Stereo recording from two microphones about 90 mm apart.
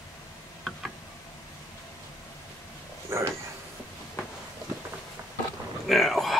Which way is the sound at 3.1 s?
30° right (ahead or behind).